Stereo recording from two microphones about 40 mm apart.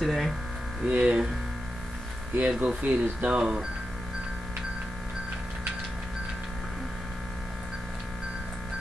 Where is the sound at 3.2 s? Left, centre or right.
Right.